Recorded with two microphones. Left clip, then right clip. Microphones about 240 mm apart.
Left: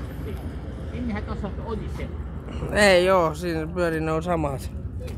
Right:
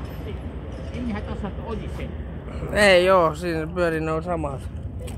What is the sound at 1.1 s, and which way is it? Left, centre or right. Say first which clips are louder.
Speech: even; centre.